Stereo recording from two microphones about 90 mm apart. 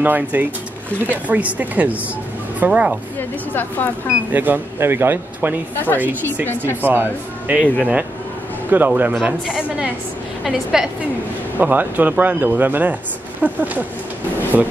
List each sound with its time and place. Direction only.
0.0 s a woman's voice: 20° right (ahead or behind)
3.2 s speech: 20° left (ahead or behind)
4.3 s speech: 20° right (ahead or behind)
6.8 s speech: 20° right (ahead or behind)
7.6 s speech: 15° left (ahead or behind)
8.6 s a woman's voice: 20° right (ahead or behind); by 10.9 s 5° right (ahead or behind)
11.5 s a woman's voice: 20° right (ahead or behind)